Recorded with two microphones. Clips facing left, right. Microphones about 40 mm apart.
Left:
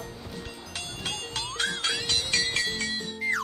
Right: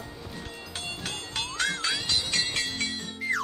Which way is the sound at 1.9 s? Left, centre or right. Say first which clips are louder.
Left 1 dB; left.